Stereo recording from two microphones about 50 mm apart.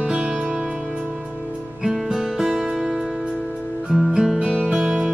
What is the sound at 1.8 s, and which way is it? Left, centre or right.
Music, centre.